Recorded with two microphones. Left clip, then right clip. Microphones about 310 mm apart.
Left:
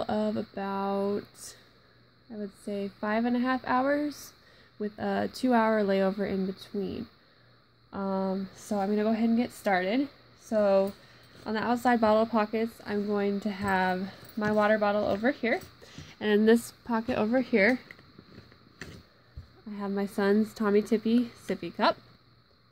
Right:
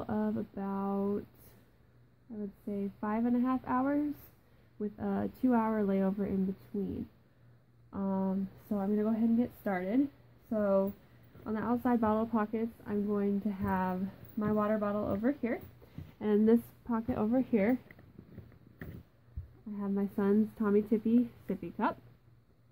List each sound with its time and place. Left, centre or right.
0.0 s a sound: left
2.3 s a woman's voice: left
7.9 s a woman's voice: left
19.8 s a woman's voice: left